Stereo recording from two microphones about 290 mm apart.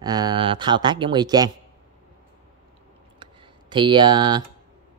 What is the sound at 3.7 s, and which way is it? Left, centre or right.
Speech, centre.